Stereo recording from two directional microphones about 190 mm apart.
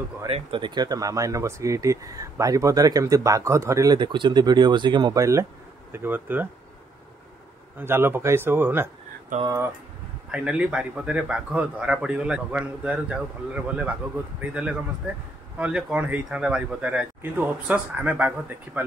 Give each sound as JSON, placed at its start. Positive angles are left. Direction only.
{"t": 0.3, "sound": "speech", "side_deg": -25}
{"t": 7.8, "sound": "speech", "side_deg": -10}
{"t": 10.3, "sound": "speech", "side_deg": -5}